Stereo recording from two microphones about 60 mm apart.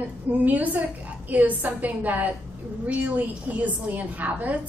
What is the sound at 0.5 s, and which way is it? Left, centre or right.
A woman's voice, right.